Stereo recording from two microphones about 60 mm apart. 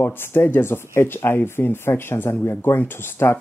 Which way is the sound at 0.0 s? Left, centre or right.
Left.